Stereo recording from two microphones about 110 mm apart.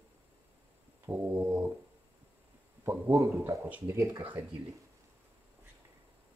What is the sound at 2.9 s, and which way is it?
Speech, 25° right (ahead or behind).